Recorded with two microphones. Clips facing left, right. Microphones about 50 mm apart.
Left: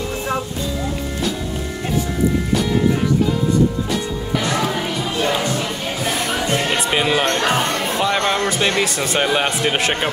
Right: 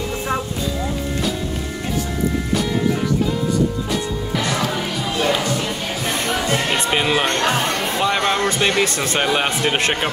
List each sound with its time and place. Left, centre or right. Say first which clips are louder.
6.7 s basketball bounce: even; centre
8.0 s music: even; centre
8.5 s speech: even; centre